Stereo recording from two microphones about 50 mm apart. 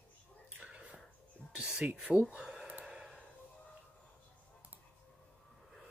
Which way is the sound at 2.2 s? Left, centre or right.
Right.